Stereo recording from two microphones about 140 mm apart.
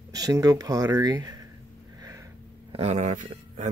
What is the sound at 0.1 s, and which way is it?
Speech, 25° right (ahead or behind).